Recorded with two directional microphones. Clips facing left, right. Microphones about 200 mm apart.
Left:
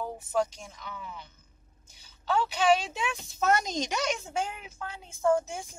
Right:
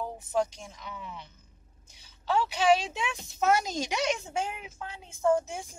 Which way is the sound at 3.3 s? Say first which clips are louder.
Right 1 dB; 5° right (ahead or behind).